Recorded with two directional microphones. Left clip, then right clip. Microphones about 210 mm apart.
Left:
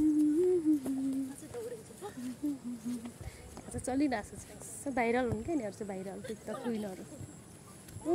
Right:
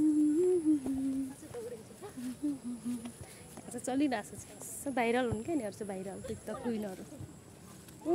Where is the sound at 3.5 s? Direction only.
Centre (ahead or behind).